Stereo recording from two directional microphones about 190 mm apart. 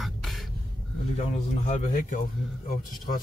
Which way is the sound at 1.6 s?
45° left (ahead or behind).